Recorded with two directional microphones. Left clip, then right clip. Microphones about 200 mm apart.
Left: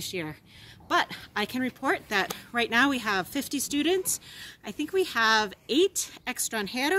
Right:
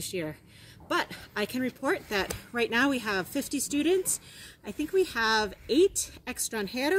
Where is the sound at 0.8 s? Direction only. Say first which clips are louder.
Left 4 dB; 15° left (ahead or behind).